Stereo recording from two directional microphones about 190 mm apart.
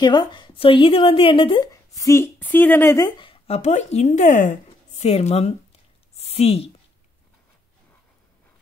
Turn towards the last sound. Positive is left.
turn(degrees=30)  # may be behind; listen again after turning